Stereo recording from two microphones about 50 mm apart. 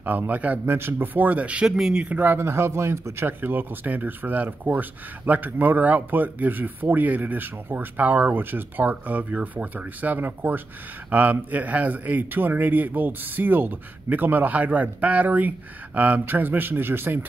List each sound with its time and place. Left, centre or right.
0.0 s speech: right
0.7 s speech: right
1.8 s speech: centre
2.0 s speech: right
2.4 s speech: right
10.1 s speech: right
16.3 s speech: right